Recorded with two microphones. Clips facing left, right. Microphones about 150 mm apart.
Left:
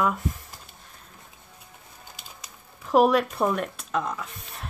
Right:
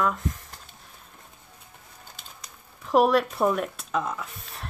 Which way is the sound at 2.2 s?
5° left (ahead or behind).